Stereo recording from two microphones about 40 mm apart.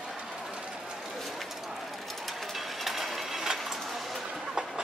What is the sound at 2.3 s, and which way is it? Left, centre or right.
Coin, centre.